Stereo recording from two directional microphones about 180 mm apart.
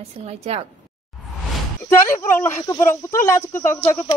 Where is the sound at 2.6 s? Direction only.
15° left (ahead or behind).